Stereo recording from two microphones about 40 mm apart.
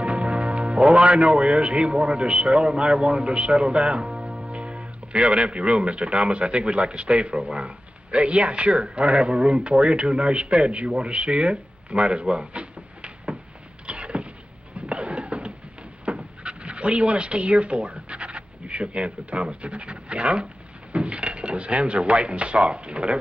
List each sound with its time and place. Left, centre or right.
0.0 s a man's voice: right
13.8 s a sound: right
16.2 s speech: right